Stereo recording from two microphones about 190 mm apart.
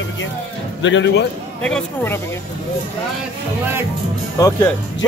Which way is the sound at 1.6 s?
5° left (ahead or behind).